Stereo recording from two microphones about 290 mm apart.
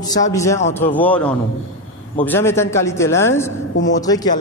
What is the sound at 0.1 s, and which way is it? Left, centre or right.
A man's voice, centre.